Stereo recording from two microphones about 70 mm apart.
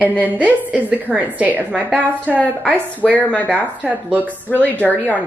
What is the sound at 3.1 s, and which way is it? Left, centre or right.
Speech, left.